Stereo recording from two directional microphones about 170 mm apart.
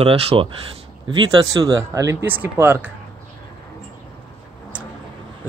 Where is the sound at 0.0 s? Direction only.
35° right (ahead or behind); by 2.9 s 15° right (ahead or behind).